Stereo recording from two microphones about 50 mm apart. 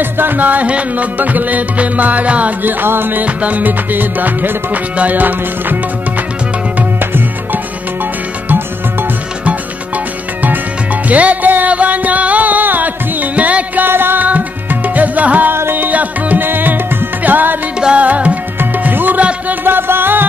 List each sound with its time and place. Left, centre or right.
0.0 s music: right
2.6 s music: right
3.3 s music: right
11.1 s music: right
13.8 s music: right
14.2 s music: right
15.5 s music: right
15.8 s music: right
16.4 s music: right
17.7 s music: centre
18.0 s music: right
18.6 s music: right